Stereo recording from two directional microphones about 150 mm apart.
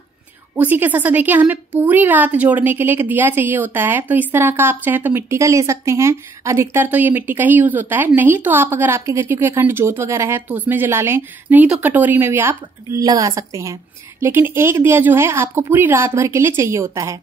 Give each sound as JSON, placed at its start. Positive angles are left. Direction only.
{"t": 0.6, "sound": "a woman's voice", "side_deg": -10}